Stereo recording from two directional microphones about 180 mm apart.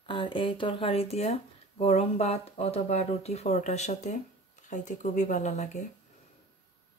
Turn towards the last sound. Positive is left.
turn(degrees=40)  # may be behind; listen again after turning